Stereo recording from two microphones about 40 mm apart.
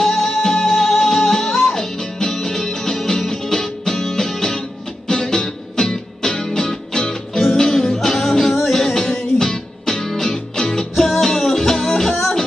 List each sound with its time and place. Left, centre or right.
0.0 s music: centre